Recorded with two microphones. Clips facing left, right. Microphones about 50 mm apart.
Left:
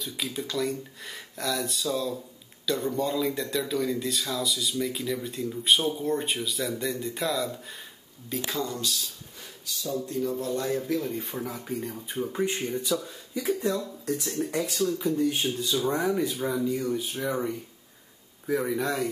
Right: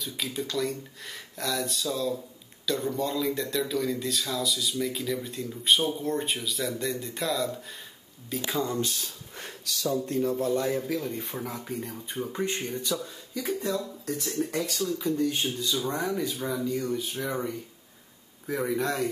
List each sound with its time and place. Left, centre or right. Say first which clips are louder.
0.0 s speech: even; centre
8.6 s speech: right 2 dB; right
9.7 s speech: right 2 dB; right
10.0 s speech: right 2 dB; right
10.4 s a man's voice: right 2 dB; right
10.8 s speech: left 2 dB; centre